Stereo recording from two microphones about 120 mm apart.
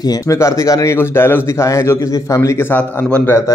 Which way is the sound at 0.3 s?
25° left (ahead or behind).